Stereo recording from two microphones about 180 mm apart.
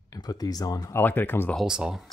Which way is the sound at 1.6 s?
5° right (ahead or behind).